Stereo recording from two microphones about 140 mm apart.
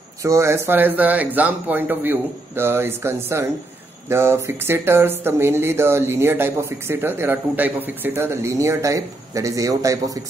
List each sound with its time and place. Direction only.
0.2 s speech: 20° right (ahead or behind)